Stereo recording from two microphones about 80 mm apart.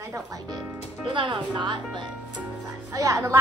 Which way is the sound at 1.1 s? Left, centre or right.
Right.